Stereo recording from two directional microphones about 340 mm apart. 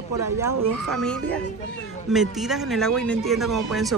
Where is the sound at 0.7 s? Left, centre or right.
Centre.